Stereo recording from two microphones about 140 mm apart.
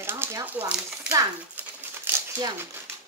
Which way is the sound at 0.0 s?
20° right (ahead or behind).